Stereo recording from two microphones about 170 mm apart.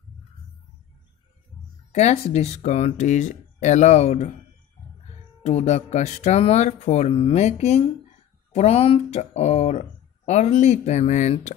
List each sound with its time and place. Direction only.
1.9 s speech: 40° left (ahead or behind)
5.4 s speech: 40° left (ahead or behind)